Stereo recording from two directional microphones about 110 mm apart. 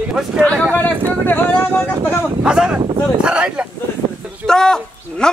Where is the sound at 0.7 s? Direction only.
15° left (ahead or behind).